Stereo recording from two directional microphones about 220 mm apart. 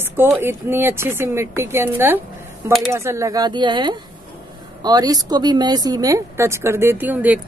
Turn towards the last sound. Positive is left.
turn(degrees=-5)  # may be behind; listen again after turning